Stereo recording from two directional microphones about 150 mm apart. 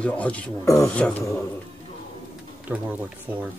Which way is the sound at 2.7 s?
10° right (ahead or behind).